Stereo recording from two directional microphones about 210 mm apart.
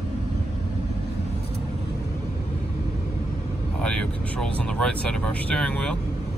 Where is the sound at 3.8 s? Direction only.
5° left (ahead or behind).